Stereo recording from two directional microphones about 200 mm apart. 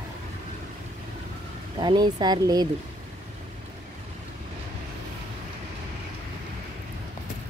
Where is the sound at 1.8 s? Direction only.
20° right (ahead or behind).